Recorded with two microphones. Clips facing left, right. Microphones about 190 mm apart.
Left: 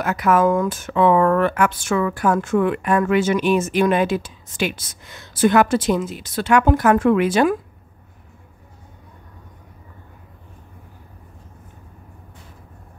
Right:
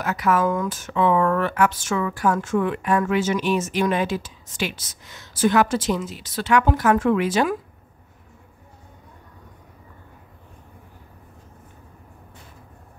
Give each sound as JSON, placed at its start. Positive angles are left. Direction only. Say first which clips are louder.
{"t": 0.0, "sound": "speech", "louder": "left 4 dB", "side_deg": 50}